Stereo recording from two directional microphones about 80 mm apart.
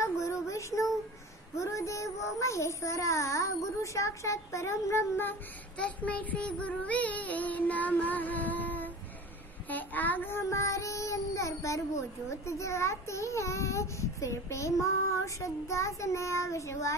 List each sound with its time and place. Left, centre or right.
0.0 s child singing: left
5.8 s child singing: centre; by 16.9 s left